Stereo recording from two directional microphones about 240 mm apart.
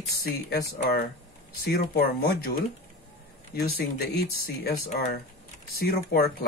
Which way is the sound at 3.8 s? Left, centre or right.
Left.